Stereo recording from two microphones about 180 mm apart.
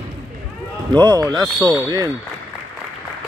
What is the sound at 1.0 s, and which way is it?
Speech, 20° right (ahead or behind).